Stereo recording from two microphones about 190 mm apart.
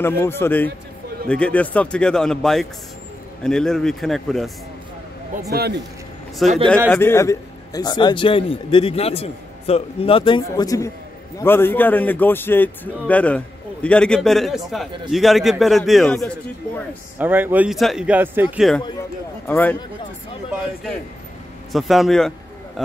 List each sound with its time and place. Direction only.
0.0 s a man's voice: 10° left (ahead or behind)
5.5 s speech: 55° right (ahead or behind)
6.4 s a man's voice: centre (ahead or behind)
6.9 s a man's voice: 10° left (ahead or behind)
17.2 s speech: 10° right (ahead or behind)
19.4 s a man's voice: 10° left (ahead or behind)
21.7 s a man's voice: centre (ahead or behind)